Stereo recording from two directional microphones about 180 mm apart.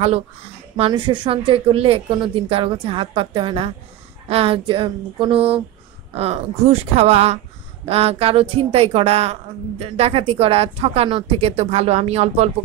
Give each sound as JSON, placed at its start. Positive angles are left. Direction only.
{"t": 0.7, "sound": "a woman's voice", "side_deg": -30}